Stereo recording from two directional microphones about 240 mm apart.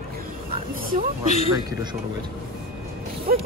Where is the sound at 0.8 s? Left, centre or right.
Right.